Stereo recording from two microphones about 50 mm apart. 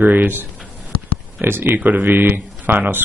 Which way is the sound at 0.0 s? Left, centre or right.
Right.